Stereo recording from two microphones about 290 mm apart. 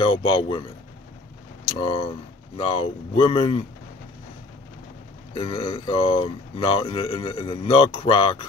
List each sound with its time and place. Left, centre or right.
0.0 s speech: centre
1.7 s speech: centre
5.3 s speech: centre